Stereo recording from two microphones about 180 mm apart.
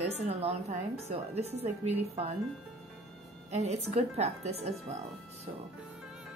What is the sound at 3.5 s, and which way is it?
A woman's voice, 35° right (ahead or behind).